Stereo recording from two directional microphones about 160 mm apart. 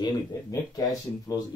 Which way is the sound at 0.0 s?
25° left (ahead or behind).